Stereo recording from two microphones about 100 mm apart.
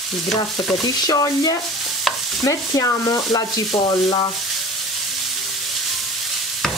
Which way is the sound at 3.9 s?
45° left (ahead or behind).